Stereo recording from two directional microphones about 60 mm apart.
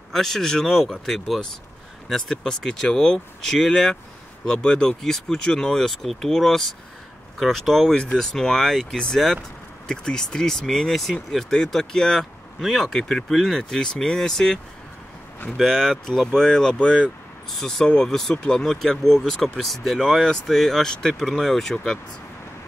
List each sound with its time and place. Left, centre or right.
0.1 s speech: centre
7.9 s speech: centre
18.6 s speech: centre